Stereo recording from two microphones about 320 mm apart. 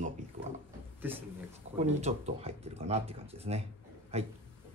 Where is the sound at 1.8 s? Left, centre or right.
Centre.